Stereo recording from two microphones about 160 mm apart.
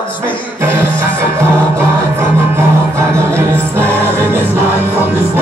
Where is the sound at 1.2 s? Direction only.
15° right (ahead or behind).